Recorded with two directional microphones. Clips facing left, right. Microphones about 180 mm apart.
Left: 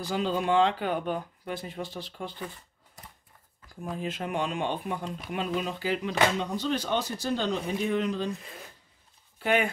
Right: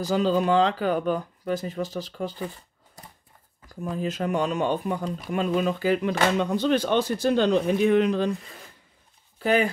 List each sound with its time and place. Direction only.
0.0 s speech: 40° right (ahead or behind)
3.6 s speech: 40° right (ahead or behind); by 8.3 s 65° right (ahead or behind)
9.4 s speech: 35° right (ahead or behind)